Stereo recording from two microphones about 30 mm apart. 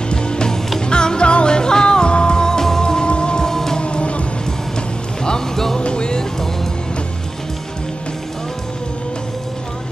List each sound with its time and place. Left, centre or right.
0.1 s music: left
3.4 s music: centre
3.8 s music: left
5.8 s music: left